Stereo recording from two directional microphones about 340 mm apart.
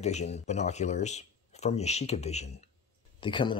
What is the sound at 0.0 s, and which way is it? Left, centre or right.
Speech, centre.